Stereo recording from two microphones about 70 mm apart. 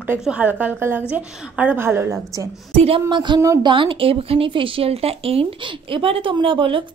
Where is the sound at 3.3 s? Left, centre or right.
Right.